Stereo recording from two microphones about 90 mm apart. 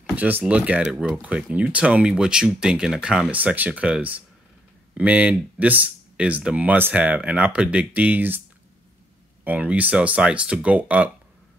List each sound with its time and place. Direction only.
0.1 s speech: 20° right (ahead or behind)
9.4 s speech: 20° right (ahead or behind)